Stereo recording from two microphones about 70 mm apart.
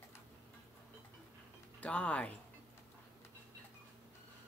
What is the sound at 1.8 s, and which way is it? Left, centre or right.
Music, centre.